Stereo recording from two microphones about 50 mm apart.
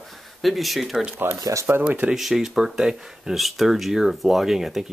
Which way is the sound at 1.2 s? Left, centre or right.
Right.